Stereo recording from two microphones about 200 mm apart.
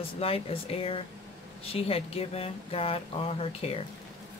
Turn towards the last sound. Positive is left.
turn(degrees=30)  # may be behind; listen again after turning